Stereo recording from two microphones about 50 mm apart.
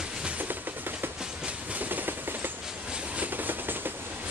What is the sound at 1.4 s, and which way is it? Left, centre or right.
Train, right.